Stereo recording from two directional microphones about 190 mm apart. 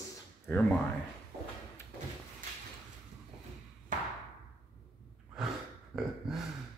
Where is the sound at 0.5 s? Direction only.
10° left (ahead or behind).